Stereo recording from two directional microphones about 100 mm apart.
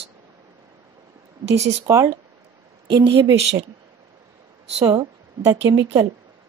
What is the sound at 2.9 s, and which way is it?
Speech, 65° right (ahead or behind).